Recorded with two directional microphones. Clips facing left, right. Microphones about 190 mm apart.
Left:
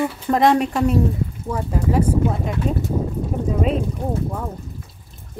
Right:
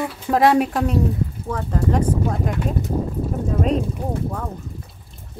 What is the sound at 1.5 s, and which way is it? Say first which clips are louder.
Speech: left 1 dB; 10° left (ahead or behind).